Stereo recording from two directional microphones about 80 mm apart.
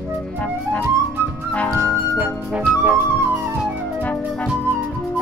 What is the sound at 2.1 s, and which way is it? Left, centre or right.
Music, centre.